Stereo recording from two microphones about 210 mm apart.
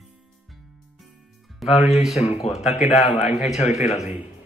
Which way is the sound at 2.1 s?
30° left (ahead or behind).